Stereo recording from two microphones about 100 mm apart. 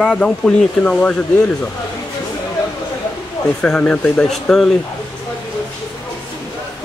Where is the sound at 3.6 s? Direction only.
10° left (ahead or behind).